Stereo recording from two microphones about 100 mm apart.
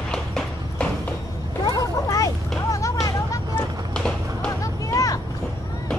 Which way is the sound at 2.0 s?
35° left (ahead or behind).